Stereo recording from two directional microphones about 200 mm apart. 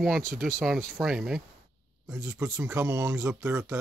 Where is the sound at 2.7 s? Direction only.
15° right (ahead or behind).